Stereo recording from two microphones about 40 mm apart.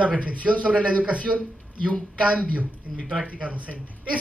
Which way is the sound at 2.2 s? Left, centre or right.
Right.